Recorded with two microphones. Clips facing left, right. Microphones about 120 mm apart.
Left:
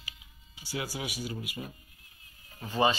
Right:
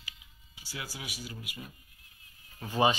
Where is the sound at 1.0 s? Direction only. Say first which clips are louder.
Left 7 dB; 50° left (ahead or behind).